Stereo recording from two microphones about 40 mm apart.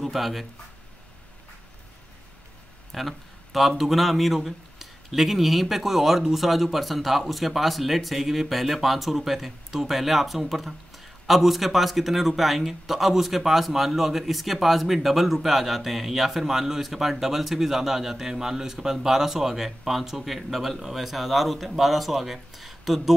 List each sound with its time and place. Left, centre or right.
0.0 s speech: centre
2.9 s a man's voice: centre